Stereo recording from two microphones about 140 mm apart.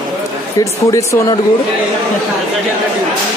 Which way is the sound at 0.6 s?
25° left (ahead or behind).